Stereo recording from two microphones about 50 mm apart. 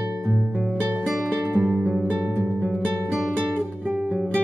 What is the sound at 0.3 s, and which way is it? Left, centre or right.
Music, right.